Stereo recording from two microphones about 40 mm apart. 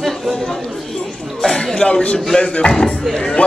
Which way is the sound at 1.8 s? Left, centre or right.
Left.